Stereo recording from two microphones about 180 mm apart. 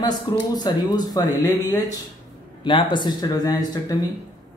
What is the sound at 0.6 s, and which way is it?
Speech, 20° left (ahead or behind).